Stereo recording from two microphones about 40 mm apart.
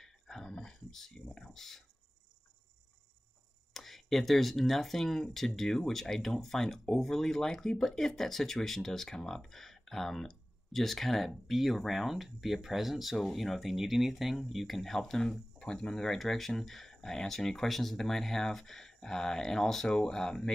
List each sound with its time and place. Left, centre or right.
0.0 s a sound: centre
1.4 s speech: centre
3.7 s speech: centre; by 15.9 s left
15.9 s speech: centre